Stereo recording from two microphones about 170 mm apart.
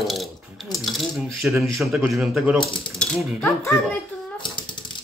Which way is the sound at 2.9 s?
15° left (ahead or behind).